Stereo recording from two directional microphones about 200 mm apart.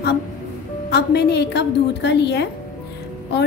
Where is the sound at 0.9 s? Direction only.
55° left (ahead or behind).